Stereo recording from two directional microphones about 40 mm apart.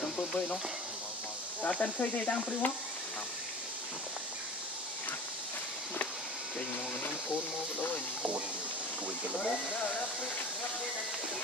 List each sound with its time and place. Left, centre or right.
1.6 s speech: left
9.4 s speech: left